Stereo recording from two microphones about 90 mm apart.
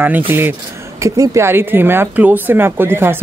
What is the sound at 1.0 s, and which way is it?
Speech, 35° right (ahead or behind).